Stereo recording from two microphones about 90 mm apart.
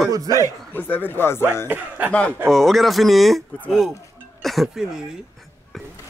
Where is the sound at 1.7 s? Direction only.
20° right (ahead or behind).